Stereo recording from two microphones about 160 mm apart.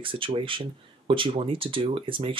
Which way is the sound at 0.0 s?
35° right (ahead or behind).